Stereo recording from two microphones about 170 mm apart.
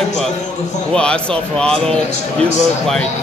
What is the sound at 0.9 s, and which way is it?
Speech, 5° left (ahead or behind).